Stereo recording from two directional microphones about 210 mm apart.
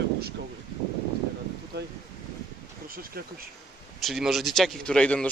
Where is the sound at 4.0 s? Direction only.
Centre (ahead or behind).